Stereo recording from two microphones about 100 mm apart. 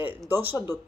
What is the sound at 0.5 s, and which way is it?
Speech, 50° left (ahead or behind).